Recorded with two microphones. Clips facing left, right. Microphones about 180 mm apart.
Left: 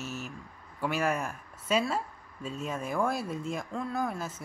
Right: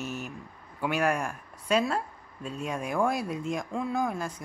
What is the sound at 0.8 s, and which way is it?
Speech, centre (ahead or behind).